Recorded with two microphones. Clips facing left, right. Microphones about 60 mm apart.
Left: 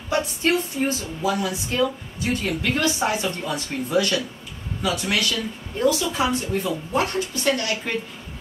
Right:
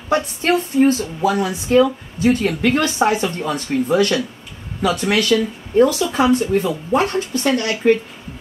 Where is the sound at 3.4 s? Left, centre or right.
Right.